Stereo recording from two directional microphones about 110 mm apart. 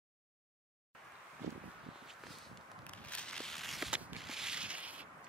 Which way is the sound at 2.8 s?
10° left (ahead or behind).